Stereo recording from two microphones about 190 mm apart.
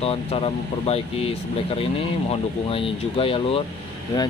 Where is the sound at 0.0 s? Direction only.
30° left (ahead or behind).